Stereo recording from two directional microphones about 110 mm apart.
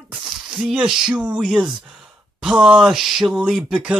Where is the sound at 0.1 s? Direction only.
5° right (ahead or behind).